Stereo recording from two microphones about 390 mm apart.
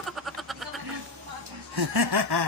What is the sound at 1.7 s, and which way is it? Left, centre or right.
Snicker, right.